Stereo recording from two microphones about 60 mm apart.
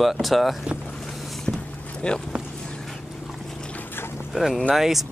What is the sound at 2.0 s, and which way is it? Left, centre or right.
Speech, centre.